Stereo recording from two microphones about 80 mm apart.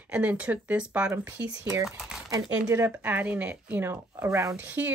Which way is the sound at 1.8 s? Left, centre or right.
Centre.